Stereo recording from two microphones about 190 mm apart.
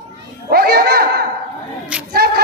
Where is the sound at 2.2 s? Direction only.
55° right (ahead or behind).